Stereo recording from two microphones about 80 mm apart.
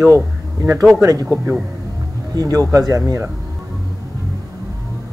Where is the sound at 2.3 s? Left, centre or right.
Right.